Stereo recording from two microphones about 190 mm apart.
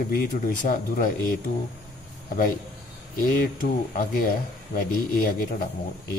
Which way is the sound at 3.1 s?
50° left (ahead or behind).